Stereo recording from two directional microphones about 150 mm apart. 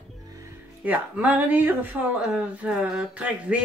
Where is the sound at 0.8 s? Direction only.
10° right (ahead or behind).